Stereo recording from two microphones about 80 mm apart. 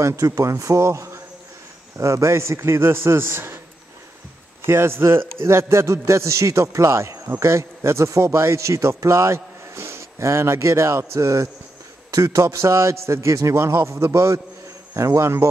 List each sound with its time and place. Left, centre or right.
0.0 s a man's voice: right
4.6 s a man's voice: right